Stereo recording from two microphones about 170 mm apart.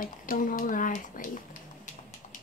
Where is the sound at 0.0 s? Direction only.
50° left (ahead or behind).